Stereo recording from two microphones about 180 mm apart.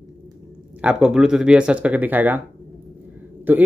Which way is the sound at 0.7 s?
5° right (ahead or behind).